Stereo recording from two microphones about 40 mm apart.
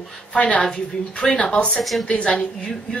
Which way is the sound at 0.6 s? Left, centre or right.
Centre.